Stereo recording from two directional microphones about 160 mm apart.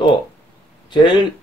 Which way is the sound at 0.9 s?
30° left (ahead or behind).